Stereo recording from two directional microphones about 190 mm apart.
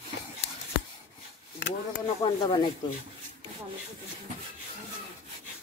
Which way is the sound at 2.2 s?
25° left (ahead or behind).